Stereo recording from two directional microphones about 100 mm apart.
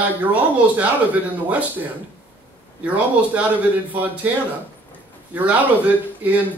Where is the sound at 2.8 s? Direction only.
15° right (ahead or behind).